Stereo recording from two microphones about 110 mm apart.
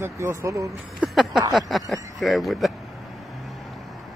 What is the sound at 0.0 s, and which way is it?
Speech, 25° right (ahead or behind).